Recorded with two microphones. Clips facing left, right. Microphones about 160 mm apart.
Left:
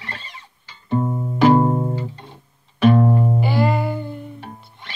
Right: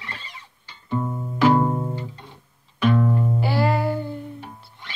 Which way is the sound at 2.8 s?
40° left (ahead or behind).